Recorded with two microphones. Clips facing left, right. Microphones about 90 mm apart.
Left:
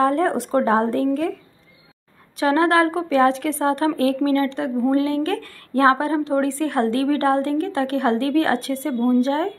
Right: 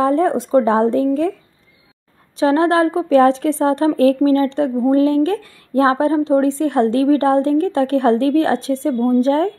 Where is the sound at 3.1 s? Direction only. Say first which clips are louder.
Right 5 dB; 35° right (ahead or behind).